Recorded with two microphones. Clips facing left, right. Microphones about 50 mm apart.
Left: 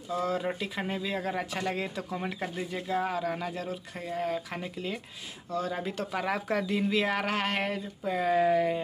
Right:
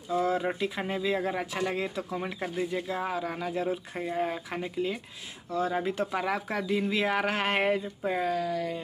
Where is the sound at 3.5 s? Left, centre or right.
Centre.